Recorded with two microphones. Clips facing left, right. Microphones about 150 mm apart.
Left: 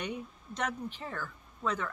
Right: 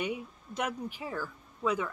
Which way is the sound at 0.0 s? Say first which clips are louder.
Right 3 dB; 10° right (ahead or behind).